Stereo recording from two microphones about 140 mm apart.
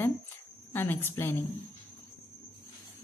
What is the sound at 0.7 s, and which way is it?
Speech, 15° left (ahead or behind).